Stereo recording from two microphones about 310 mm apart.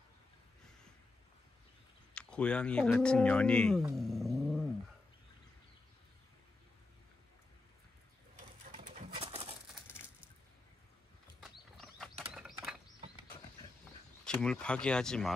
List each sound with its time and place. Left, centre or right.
2.1 s speech: centre
3.9 s cat: centre
8.7 s bird: right
11.4 s a sound: centre
14.2 s speech: centre